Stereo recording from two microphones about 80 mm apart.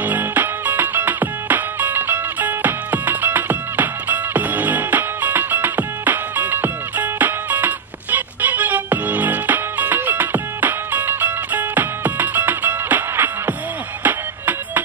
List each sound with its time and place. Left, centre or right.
0.0 s music: right